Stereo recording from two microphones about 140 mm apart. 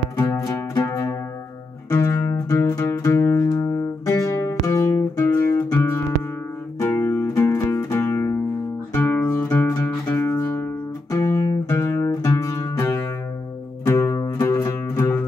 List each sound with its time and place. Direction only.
0.2 s music: 20° left (ahead or behind)
13.8 s music: 20° left (ahead or behind)